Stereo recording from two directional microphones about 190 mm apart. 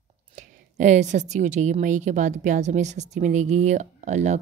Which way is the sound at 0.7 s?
40° right (ahead or behind).